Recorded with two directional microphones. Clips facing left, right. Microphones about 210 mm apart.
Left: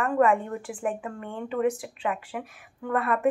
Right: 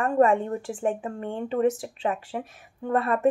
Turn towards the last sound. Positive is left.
turn(degrees=-30)  # may be behind; listen again after turning